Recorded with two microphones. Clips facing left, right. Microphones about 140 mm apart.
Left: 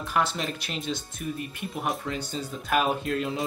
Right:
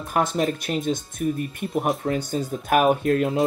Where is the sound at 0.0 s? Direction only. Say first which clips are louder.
Right 5 dB; 45° right (ahead or behind).